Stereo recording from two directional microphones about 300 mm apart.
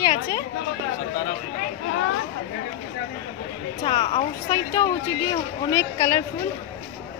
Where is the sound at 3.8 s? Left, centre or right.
Centre.